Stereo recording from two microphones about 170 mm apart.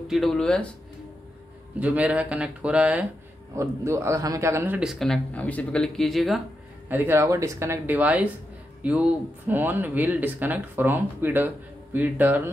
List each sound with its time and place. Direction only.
0.1 s speech: centre (ahead or behind)
1.8 s speech: 10° right (ahead or behind)
4.7 s speech: centre (ahead or behind)
6.9 s speech: 15° right (ahead or behind)